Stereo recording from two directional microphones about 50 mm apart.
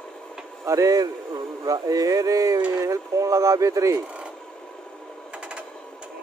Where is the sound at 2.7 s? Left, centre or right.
Right.